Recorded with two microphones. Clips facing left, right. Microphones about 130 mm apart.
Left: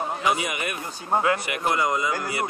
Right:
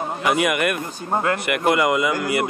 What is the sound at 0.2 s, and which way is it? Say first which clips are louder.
Speech: right 8 dB; 60° right (ahead or behind).